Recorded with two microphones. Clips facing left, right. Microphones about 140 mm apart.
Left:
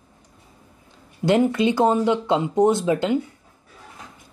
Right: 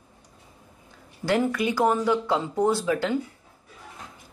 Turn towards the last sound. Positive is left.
turn(degrees=20)  # may be behind; listen again after turning